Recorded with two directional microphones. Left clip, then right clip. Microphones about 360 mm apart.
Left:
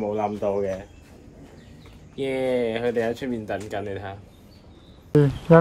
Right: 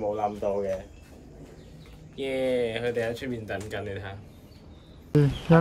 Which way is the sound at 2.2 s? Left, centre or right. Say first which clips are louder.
Left 3 dB; centre.